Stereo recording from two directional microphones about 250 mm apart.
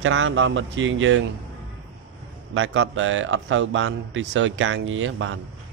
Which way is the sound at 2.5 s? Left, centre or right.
Right.